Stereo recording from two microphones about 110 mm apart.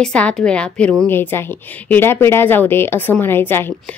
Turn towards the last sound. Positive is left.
turn(degrees=20)  # may be behind; listen again after turning